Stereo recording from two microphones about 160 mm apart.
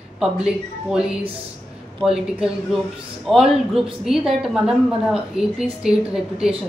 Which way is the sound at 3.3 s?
Centre (ahead or behind).